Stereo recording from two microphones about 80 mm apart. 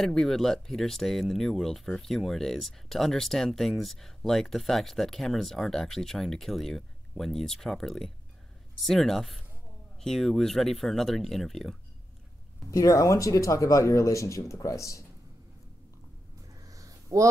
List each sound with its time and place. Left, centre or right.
0.0 s speech: centre
12.7 s speech: left
16.6 s a sound: right